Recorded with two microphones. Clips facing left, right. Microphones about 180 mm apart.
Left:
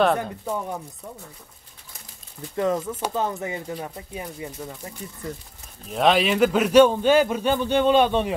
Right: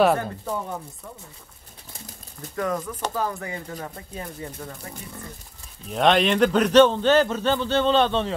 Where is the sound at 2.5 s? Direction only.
25° left (ahead or behind).